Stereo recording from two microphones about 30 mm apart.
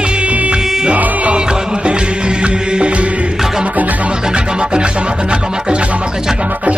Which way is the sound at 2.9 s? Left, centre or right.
Right.